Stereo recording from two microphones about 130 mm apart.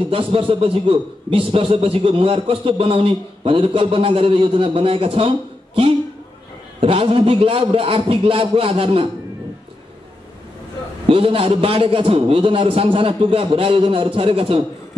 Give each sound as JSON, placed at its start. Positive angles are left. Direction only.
{"t": 0.1, "sound": "a man's voice", "side_deg": -45}
{"t": 6.8, "sound": "a man's voice", "side_deg": -45}
{"t": 11.1, "sound": "a man's voice", "side_deg": -45}